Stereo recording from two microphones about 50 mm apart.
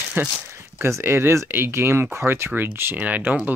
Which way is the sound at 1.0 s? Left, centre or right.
Right.